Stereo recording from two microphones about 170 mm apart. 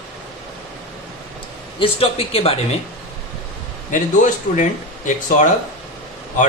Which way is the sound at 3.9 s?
50° left (ahead or behind).